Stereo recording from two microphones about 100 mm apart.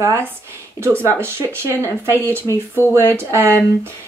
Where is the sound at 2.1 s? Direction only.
20° left (ahead or behind).